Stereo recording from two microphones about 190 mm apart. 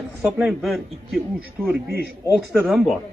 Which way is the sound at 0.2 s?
Centre (ahead or behind).